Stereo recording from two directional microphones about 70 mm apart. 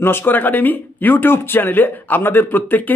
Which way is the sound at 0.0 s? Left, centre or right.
Left.